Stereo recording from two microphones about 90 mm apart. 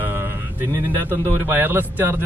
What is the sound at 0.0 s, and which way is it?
A man's voice, 20° right (ahead or behind).